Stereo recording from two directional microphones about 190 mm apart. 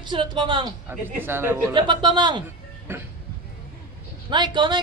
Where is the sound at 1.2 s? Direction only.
10° right (ahead or behind).